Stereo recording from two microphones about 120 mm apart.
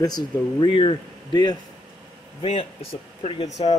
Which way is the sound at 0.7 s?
45° left (ahead or behind).